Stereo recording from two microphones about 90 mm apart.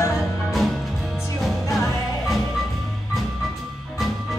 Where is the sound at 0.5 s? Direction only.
Centre (ahead or behind).